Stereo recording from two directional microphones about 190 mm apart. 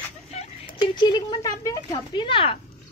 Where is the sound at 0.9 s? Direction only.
25° left (ahead or behind).